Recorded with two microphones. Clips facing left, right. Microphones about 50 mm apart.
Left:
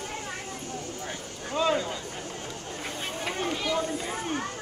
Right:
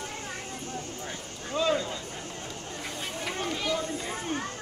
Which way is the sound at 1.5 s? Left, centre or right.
Left.